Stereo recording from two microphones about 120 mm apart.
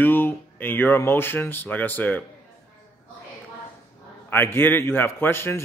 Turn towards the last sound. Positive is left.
turn(degrees=20)  # may be behind; listen again after turning